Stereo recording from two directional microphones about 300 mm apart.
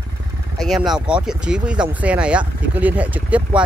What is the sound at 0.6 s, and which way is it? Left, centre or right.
Speech, centre.